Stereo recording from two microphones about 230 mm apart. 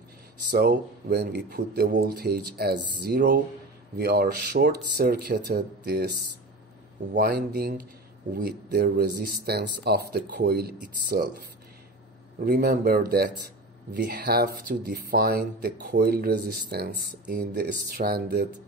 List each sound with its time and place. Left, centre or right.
0.5 s speech: right
7.2 s speech: right
12.4 s speech: right